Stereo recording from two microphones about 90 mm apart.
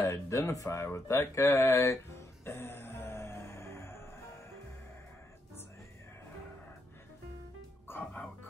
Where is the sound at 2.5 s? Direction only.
25° left (ahead or behind).